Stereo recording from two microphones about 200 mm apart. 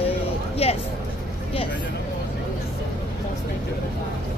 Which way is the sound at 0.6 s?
30° left (ahead or behind).